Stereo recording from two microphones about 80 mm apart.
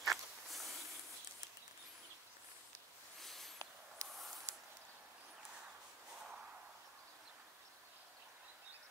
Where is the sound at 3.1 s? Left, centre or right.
Centre.